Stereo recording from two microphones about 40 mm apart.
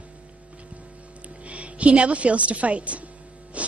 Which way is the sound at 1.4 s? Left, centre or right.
Right.